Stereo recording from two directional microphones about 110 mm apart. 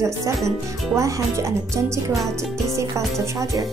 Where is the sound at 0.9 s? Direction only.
30° right (ahead or behind).